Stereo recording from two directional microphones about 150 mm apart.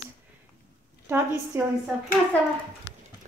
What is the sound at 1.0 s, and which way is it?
Speech, 15° right (ahead or behind).